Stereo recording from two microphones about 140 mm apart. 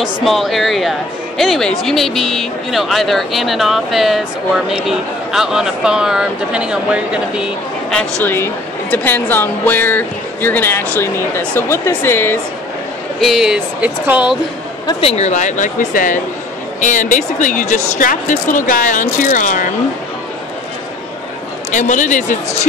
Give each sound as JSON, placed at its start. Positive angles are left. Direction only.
{"t": 0.0, "sound": "speech", "side_deg": 0}
{"t": 8.2, "sound": "speech", "side_deg": 15}
{"t": 13.2, "sound": "speech", "side_deg": -5}
{"t": 14.9, "sound": "speech", "side_deg": 45}
{"t": 21.7, "sound": "speech", "side_deg": 65}